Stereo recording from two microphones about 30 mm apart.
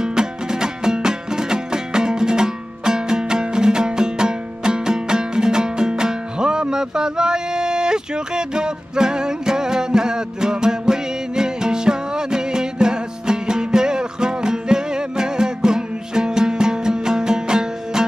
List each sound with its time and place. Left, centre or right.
0.0 s music: right